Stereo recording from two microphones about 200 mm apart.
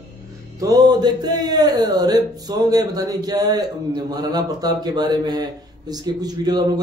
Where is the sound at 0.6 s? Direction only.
20° right (ahead or behind).